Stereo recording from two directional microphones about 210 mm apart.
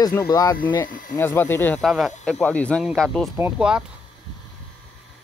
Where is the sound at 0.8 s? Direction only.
40° left (ahead or behind).